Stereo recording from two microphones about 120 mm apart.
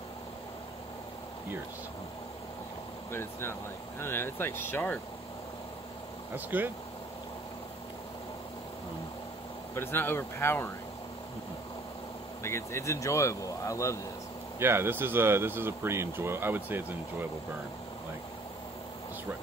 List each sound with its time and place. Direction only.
3.1 s speech: 20° left (ahead or behind)
6.3 s speech: 15° right (ahead or behind)
9.8 s speech: 20° left (ahead or behind)
12.4 s speech: 20° left (ahead or behind)
14.6 s speech: 20° right (ahead or behind)